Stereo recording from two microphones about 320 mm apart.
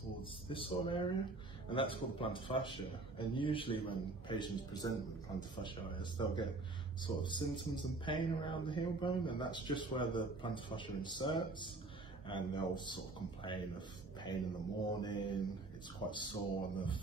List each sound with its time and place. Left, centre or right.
0.2 s speech: centre